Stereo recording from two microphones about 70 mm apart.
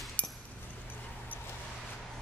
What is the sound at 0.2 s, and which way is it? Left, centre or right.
Chink, left.